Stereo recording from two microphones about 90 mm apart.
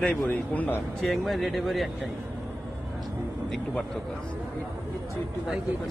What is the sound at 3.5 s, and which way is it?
Speech, 10° left (ahead or behind).